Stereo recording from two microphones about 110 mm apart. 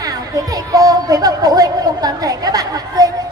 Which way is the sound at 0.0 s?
35° right (ahead or behind).